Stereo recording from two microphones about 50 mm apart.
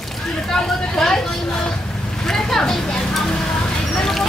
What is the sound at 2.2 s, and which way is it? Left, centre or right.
Vehicle, centre.